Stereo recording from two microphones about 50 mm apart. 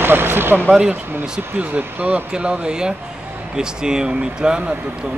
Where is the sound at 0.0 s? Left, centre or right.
Right.